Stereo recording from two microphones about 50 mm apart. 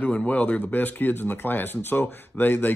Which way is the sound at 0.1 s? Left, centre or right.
Left.